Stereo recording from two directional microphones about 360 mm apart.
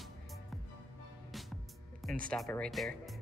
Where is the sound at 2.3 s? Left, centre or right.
Centre.